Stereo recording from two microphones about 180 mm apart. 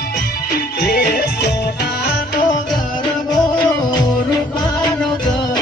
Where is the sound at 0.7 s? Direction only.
65° left (ahead or behind).